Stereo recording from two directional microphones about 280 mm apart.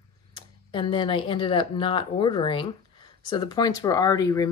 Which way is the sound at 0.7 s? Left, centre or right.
Centre.